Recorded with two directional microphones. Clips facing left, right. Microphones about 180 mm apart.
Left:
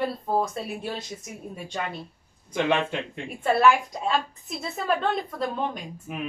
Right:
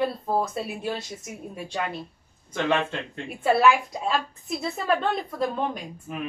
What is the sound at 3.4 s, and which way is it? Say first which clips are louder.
A woman's voice: even; centre (ahead or behind).